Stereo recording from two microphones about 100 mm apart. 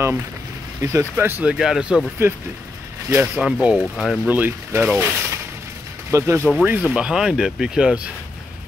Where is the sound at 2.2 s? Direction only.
25° right (ahead or behind).